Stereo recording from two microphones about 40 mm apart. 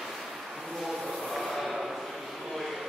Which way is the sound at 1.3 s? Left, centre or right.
Centre.